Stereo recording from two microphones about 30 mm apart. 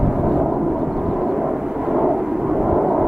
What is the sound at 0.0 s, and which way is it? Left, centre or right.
Vehicle, centre.